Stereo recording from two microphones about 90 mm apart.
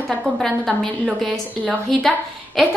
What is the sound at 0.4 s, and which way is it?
Speech, 5° left (ahead or behind).